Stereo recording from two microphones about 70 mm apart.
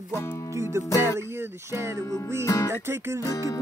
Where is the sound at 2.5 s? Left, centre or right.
Left.